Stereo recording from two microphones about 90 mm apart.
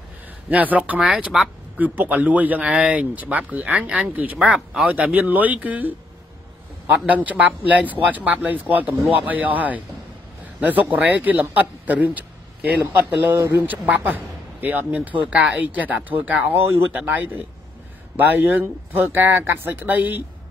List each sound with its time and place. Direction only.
0.5 s speech: 20° right (ahead or behind)
1.8 s speech: 20° right (ahead or behind)
7.2 s speech: 15° right (ahead or behind)